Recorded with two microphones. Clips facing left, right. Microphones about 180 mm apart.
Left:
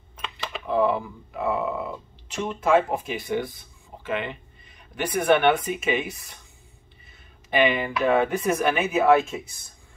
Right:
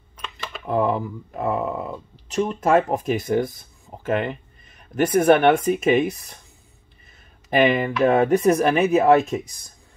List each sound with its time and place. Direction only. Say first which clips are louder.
0.7 s speech: right 1 dB; 45° right (ahead or behind)
7.4 s speech: right 4 dB; 40° right (ahead or behind)